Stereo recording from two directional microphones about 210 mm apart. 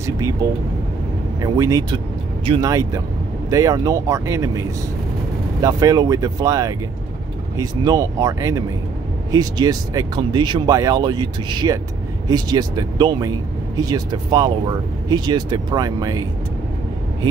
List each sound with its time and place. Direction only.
0.0 s speech: 15° right (ahead or behind)